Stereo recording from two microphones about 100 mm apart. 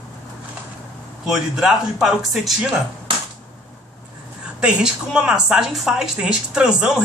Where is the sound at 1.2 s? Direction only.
5° right (ahead or behind).